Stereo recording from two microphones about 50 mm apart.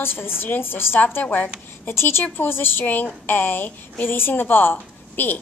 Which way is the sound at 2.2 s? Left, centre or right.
Left.